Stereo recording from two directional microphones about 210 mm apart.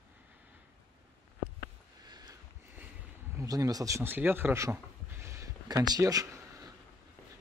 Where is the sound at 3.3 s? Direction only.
15° right (ahead or behind).